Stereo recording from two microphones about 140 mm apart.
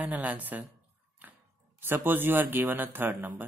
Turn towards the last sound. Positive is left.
turn(degrees=-15)  # may be behind; listen again after turning